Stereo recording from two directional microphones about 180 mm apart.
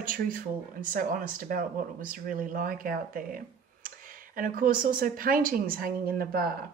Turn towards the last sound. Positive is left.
turn(degrees=-55)  # may be behind; listen again after turning